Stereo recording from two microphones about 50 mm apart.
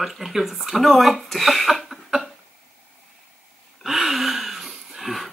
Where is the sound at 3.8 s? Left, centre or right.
Centre.